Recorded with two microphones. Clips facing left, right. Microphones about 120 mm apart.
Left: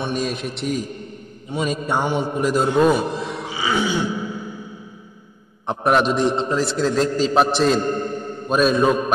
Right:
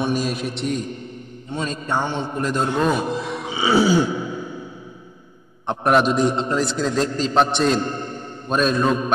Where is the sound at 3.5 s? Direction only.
30° right (ahead or behind).